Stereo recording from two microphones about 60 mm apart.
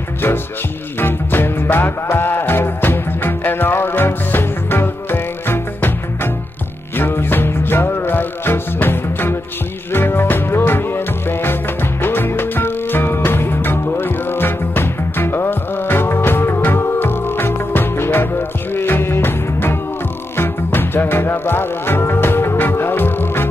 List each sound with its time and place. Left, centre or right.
0.9 s music: left